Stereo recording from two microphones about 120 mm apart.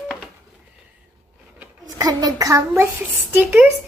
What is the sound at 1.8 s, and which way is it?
A woman's voice, 35° right (ahead or behind).